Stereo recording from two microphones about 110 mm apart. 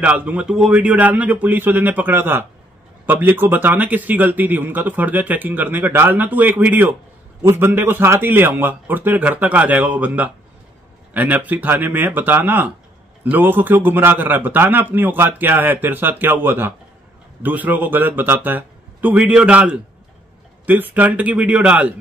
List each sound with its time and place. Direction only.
0.0 s a man's voice: 10° right (ahead or behind)